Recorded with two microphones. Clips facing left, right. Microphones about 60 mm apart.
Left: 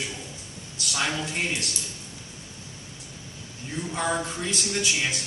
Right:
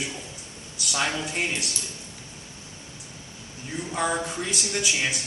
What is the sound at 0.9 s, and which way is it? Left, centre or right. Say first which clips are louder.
Speech: right 1 dB; centre.